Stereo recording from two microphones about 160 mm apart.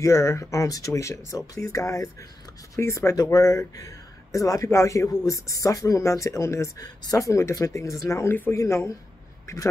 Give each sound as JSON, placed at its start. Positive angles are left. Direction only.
{"t": 0.0, "sound": "speech", "side_deg": 20}